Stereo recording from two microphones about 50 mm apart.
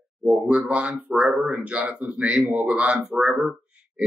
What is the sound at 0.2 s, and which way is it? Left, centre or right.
Speech, right.